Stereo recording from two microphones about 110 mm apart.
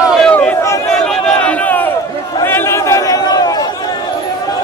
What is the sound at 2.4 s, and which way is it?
Chatter, 20° left (ahead or behind).